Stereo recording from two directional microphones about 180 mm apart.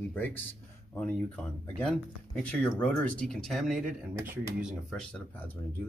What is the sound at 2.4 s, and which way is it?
Speech, 5° left (ahead or behind).